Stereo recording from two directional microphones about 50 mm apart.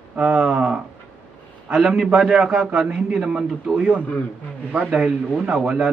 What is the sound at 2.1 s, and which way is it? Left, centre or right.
A man's voice, right.